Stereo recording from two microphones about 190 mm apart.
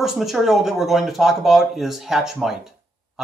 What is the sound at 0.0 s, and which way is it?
Speech, centre (ahead or behind).